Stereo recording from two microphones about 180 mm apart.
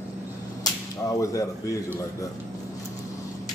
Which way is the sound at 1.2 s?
20° left (ahead or behind).